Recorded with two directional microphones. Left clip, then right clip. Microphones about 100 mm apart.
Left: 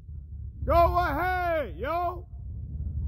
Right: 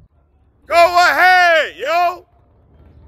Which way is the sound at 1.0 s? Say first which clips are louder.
Right 17 dB; 20° right (ahead or behind).